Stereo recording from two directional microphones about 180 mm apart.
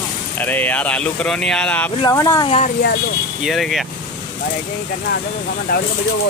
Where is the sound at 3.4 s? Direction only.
Centre (ahead or behind).